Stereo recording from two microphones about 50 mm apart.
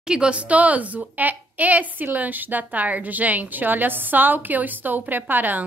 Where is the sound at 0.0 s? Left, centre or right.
Centre.